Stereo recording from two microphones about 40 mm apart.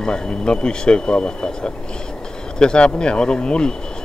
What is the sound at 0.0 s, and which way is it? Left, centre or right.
Speech, left.